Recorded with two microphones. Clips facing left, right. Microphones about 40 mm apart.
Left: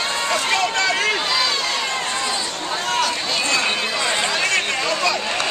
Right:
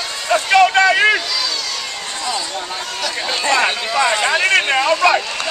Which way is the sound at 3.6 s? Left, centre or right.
Centre.